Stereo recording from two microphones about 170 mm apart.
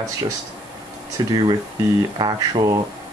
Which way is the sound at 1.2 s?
25° right (ahead or behind).